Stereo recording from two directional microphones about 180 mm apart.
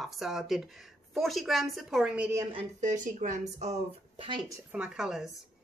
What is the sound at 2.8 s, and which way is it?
Speech, 45° right (ahead or behind).